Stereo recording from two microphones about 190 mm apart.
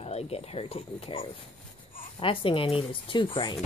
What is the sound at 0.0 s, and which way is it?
Speech, 35° left (ahead or behind).